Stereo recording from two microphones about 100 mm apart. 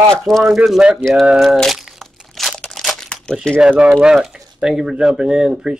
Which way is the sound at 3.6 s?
10° right (ahead or behind).